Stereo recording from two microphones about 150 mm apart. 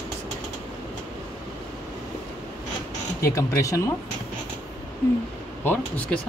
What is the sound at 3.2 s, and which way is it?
Speech, 20° left (ahead or behind).